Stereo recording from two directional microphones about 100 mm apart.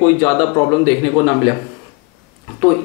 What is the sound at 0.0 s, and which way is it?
Speech, 15° left (ahead or behind).